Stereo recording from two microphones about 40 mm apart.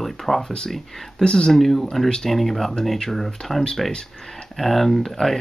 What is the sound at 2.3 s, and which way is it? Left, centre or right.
Speech, centre.